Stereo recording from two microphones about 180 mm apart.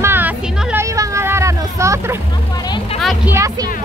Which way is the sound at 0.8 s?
15° right (ahead or behind).